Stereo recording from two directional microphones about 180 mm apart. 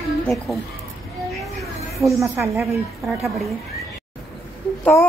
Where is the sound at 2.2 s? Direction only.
15° right (ahead or behind).